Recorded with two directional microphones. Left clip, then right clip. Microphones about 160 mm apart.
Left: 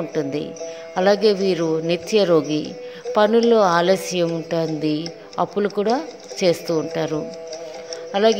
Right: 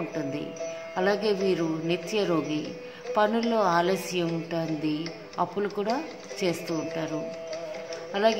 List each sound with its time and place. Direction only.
0.1 s a woman's voice: 45° left (ahead or behind)